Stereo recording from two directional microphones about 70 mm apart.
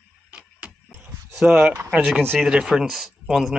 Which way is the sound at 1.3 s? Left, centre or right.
Centre.